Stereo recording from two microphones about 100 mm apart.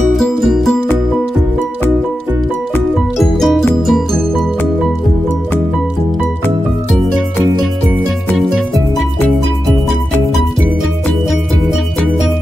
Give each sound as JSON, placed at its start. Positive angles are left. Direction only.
{"t": 0.1, "sound": "music", "side_deg": 0}
{"t": 3.2, "sound": "music", "side_deg": 0}